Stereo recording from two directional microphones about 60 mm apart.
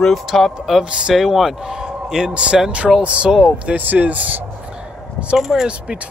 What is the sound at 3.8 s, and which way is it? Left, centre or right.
Speech, right.